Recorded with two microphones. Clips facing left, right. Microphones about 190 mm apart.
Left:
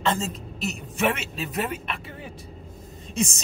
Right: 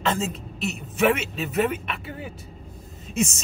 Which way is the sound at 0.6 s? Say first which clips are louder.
Right 4 dB; centre (ahead or behind).